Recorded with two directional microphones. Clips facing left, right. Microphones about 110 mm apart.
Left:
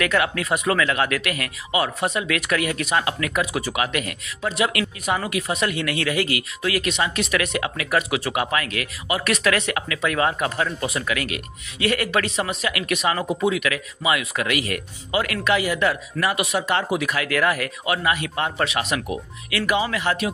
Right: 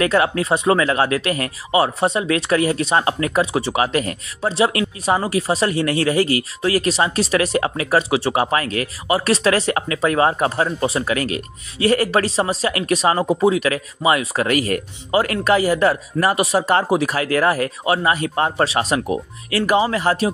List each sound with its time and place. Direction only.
0.0 s speech: 30° right (ahead or behind)